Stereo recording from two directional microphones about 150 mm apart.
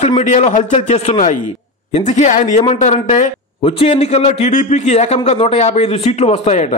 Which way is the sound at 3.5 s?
40° left (ahead or behind).